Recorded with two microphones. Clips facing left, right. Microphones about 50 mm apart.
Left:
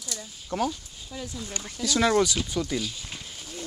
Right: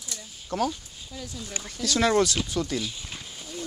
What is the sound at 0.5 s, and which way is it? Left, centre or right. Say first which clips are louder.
Speech: right 1 dB; left.